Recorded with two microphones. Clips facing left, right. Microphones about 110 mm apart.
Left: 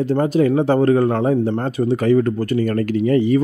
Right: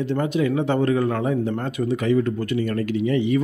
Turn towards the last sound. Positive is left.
turn(degrees=40)  # may be behind; listen again after turning